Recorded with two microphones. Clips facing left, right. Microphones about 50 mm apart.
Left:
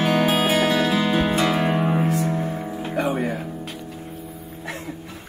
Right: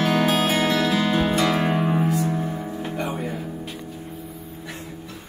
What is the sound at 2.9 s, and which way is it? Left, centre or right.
Music, left.